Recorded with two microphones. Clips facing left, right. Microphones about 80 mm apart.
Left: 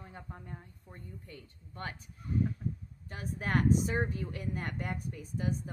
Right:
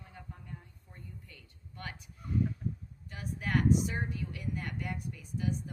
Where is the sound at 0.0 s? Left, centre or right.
Left.